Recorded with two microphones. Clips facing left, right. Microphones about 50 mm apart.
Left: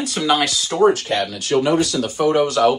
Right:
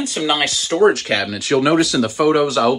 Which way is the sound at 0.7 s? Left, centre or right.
Right.